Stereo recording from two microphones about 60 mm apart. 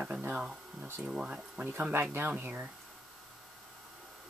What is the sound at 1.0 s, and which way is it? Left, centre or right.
Speech, centre.